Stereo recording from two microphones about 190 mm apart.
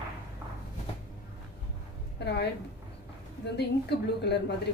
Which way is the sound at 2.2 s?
60° left (ahead or behind).